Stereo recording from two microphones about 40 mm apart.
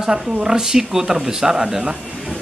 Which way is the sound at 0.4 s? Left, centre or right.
Centre.